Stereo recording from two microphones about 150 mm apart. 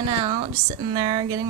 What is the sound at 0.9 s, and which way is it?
Speech, 25° right (ahead or behind).